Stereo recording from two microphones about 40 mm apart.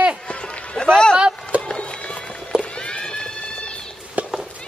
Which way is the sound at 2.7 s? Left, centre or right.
Left.